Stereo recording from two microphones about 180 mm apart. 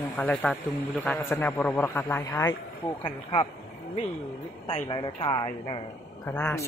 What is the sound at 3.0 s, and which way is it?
Speech, 25° left (ahead or behind).